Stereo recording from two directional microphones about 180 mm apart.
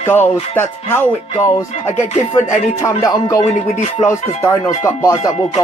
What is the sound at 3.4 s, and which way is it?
Music, 40° left (ahead or behind).